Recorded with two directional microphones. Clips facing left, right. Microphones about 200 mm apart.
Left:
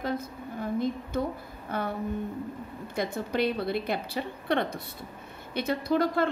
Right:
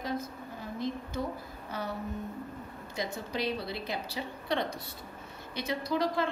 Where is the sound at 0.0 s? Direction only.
55° left (ahead or behind).